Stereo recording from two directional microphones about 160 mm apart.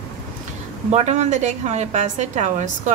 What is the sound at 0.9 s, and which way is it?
A woman's voice, 45° right (ahead or behind).